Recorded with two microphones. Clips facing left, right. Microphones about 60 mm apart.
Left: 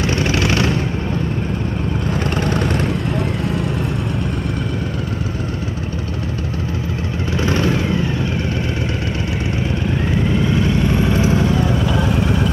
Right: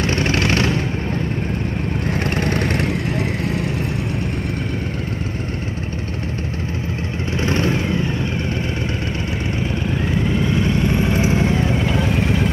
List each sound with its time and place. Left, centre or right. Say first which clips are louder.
0.0 s vehicle: left 1 dB; right
2.4 s vehicle: left 1 dB; right
7.3 s vehicle: left 1 dB; right
10.3 s vehicle: left 2 dB; centre
10.7 s vehicle: left 1 dB; right
12.0 s vehicle: left 1 dB; left